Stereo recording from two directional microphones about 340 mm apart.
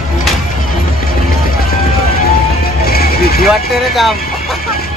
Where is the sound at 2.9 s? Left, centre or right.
Left.